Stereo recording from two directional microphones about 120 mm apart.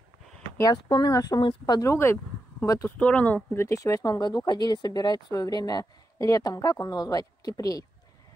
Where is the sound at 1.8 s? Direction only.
20° left (ahead or behind).